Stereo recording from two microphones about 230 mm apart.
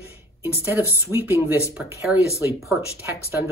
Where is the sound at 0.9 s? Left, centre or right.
Centre.